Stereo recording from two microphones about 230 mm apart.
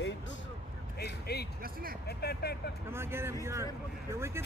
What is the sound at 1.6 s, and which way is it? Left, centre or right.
Speech, right.